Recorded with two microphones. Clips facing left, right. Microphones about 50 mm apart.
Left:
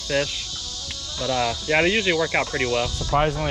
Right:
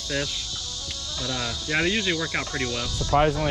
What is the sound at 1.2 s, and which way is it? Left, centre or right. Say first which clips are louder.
Speech: left 8 dB; left.